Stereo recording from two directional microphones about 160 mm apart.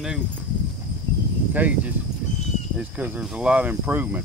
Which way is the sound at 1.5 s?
10° right (ahead or behind).